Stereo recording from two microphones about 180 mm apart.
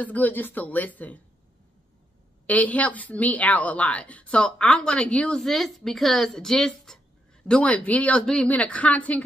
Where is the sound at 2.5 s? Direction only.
10° left (ahead or behind).